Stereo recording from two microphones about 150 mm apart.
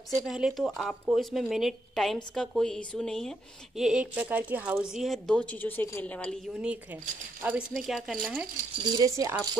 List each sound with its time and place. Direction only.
0.3 s a woman's voice: centre (ahead or behind)
8.7 s speech: 30° right (ahead or behind)